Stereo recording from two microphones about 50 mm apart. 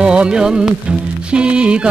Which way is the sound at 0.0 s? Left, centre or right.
Centre.